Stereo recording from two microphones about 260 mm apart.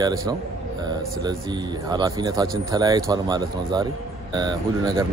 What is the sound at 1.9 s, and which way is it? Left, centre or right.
Speech, centre.